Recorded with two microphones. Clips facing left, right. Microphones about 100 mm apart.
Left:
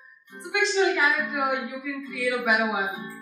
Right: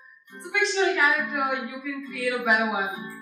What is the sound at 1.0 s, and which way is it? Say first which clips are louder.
Speech: right 1 dB; 20° right (ahead or behind).